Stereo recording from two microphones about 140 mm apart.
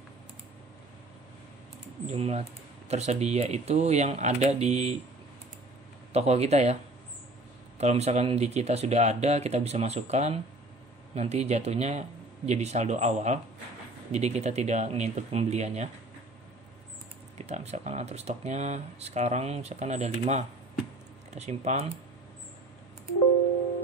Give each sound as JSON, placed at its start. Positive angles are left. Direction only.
{"t": 2.0, "sound": "speech", "side_deg": -50}
{"t": 6.1, "sound": "speech", "side_deg": -50}
{"t": 7.8, "sound": "speech", "side_deg": -50}
{"t": 17.5, "sound": "speech", "side_deg": -50}